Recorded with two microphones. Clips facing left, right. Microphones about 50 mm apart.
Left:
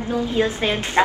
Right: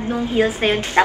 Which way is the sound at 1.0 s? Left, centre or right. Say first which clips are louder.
Right 2 dB; centre.